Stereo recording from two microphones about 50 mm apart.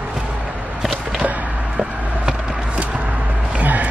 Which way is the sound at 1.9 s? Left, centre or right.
Right.